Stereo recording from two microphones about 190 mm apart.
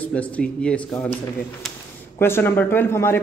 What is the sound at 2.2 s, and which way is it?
A man's voice, 10° left (ahead or behind).